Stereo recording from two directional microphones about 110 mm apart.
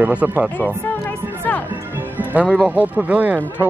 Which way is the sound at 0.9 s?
20° left (ahead or behind).